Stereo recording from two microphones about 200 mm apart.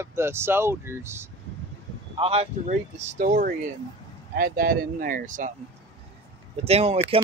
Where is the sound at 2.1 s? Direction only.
30° right (ahead or behind).